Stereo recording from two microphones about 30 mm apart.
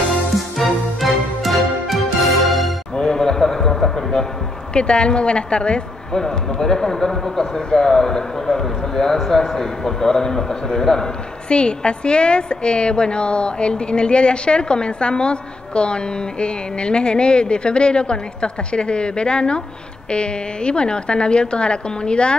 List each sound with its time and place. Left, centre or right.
0.6 s music: centre
3.0 s a sound: left
4.7 s a woman's voice: left
6.1 s speech: centre
11.4 s a woman's voice: left